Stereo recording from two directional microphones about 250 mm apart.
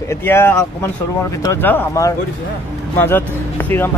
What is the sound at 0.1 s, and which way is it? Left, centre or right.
Speech, centre.